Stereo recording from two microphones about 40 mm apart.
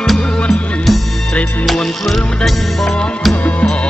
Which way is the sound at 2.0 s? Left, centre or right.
Centre.